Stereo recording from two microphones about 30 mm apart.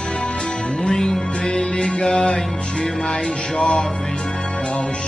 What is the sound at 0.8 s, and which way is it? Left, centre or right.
Music, centre.